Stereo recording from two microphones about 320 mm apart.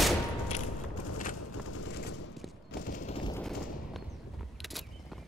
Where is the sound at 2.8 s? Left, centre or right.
Left.